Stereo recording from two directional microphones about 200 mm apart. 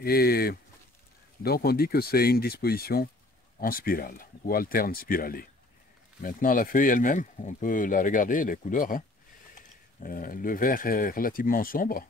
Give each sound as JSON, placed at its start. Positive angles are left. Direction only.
{"t": 0.0, "sound": "speech", "side_deg": 50}
{"t": 10.0, "sound": "speech", "side_deg": 45}